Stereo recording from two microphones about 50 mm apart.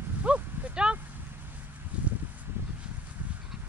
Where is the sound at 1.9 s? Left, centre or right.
Right.